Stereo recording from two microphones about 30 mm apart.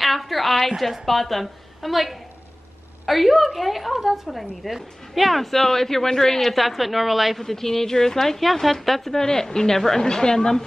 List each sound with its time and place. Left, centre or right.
0.0 s a sound: centre
1.0 s a woman's voice: centre
3.9 s a woman's voice: centre
6.5 s a woman's voice: centre
7.3 s speech: centre
9.2 s a woman's voice: left